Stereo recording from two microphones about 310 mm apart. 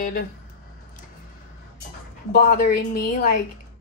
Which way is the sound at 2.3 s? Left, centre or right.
Left.